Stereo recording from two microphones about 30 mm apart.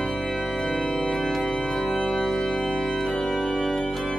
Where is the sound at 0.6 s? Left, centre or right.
Left.